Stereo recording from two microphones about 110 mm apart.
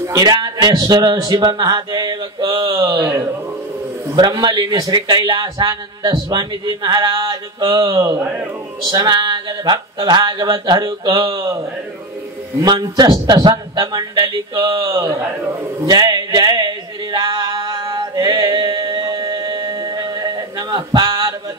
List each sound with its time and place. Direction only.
0.0 s a man's voice: 35° right (ahead or behind)
4.1 s a man's voice: 40° right (ahead or behind)
12.7 s a man's voice: 40° right (ahead or behind)
15.9 s a sound: 40° right (ahead or behind)
17.6 s music: 40° right (ahead or behind)